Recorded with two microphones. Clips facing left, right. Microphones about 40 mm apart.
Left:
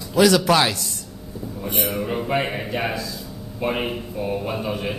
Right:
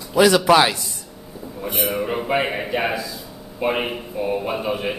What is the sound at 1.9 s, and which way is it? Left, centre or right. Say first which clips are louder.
A man's voice: right 2 dB; centre.